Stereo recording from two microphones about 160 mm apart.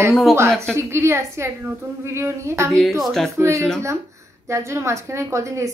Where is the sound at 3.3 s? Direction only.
20° right (ahead or behind).